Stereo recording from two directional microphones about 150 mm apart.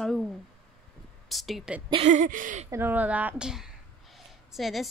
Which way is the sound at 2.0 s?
60° right (ahead or behind).